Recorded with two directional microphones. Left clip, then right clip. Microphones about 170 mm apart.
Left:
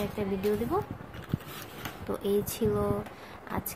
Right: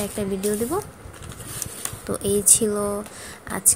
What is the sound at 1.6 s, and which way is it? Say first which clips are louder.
A woman's voice: right 5 dB; 30° right (ahead or behind).